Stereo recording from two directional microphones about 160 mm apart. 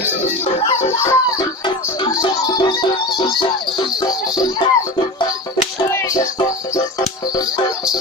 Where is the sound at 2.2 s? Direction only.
30° left (ahead or behind).